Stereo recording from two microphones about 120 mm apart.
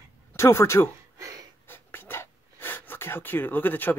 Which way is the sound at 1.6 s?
15° left (ahead or behind).